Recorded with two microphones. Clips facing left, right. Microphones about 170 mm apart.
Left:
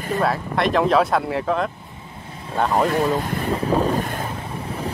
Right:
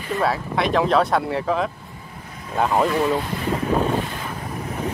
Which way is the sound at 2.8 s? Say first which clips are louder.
Even; 45° left (ahead or behind).